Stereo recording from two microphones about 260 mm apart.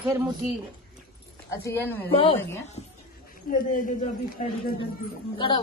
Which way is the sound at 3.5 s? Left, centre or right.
Left.